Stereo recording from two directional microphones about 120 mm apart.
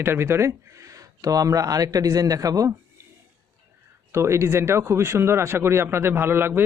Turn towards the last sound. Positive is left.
turn(degrees=-20)  # may be behind; listen again after turning